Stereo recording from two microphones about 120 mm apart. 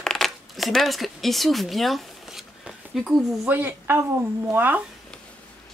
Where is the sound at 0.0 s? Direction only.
Centre (ahead or behind).